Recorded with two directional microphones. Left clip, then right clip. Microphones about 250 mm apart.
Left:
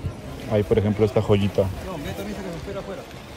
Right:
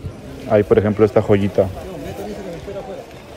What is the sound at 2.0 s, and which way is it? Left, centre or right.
Chatter, centre.